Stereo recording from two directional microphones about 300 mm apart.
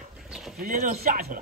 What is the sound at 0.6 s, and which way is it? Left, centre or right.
Speech, right.